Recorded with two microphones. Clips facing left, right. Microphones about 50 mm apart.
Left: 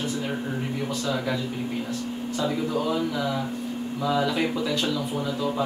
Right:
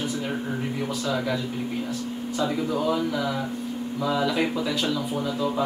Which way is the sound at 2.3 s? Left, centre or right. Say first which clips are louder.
Right 1 dB; centre.